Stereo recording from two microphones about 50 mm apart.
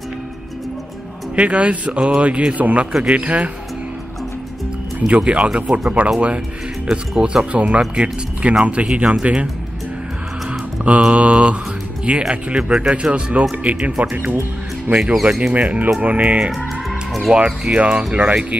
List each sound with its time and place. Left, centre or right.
1.3 s speech: right
5.0 s speech: right
10.8 s speech: right
15.5 s speech: right